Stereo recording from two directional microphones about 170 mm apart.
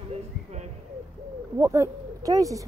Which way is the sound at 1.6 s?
20° right (ahead or behind).